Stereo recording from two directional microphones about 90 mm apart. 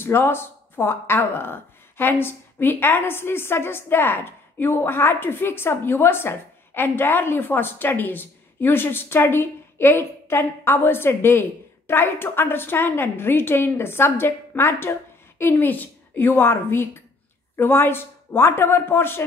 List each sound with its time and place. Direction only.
0.0 s speech: 25° left (ahead or behind)